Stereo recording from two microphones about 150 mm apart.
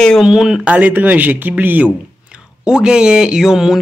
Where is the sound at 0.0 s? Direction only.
Centre (ahead or behind).